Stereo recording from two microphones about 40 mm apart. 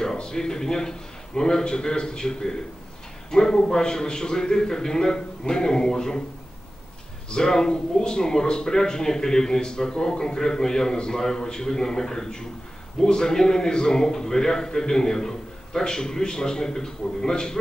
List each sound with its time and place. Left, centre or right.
0.0 s speech: centre
7.2 s speech: centre